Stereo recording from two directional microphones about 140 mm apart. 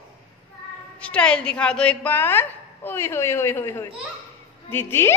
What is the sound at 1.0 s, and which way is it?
A woman's voice, 5° left (ahead or behind).